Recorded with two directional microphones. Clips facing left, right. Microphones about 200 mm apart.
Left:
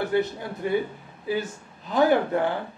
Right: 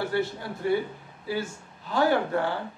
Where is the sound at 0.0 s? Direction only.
20° left (ahead or behind).